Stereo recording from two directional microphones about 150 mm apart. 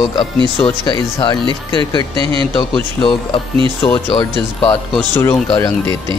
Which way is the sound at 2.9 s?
35° left (ahead or behind).